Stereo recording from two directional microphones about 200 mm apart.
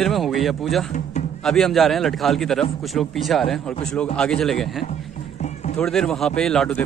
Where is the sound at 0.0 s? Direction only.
Centre (ahead or behind).